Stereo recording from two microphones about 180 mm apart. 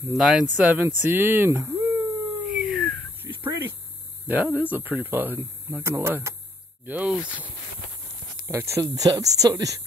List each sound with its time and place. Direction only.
0.2 s speech: centre (ahead or behind)
2.5 s a sound: centre (ahead or behind)
4.3 s speech: 10° right (ahead or behind)
8.5 s speech: 15° right (ahead or behind)